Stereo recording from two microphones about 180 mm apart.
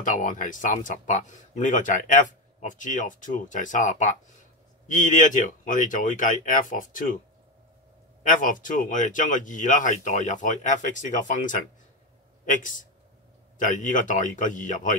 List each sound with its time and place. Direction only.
0.0 s speech: 45° left (ahead or behind)
8.2 s speech: 50° left (ahead or behind)